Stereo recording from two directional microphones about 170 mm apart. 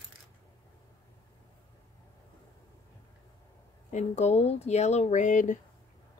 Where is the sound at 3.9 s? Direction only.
40° left (ahead or behind).